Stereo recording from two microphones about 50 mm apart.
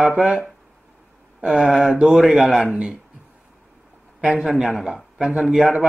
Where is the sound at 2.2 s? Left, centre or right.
Centre.